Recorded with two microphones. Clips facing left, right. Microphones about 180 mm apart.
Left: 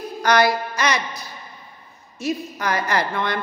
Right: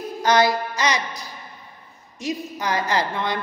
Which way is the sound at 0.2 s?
20° right (ahead or behind).